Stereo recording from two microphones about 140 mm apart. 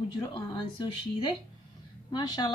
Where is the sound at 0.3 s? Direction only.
35° left (ahead or behind).